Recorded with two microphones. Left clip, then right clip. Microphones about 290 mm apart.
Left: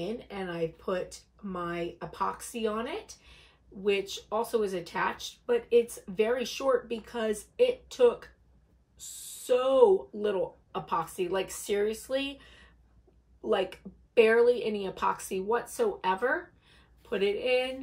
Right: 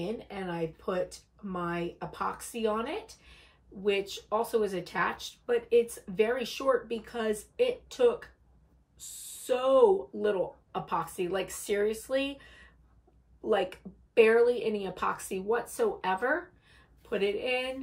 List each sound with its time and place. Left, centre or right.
0.0 s speech: centre